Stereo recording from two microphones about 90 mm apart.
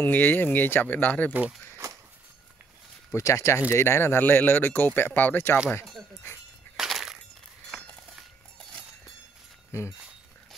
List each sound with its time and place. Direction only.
0.0 s speech: 20° left (ahead or behind)
3.1 s speech: 35° left (ahead or behind)
6.8 s breaking: 5° right (ahead or behind)
9.7 s speech: 30° left (ahead or behind)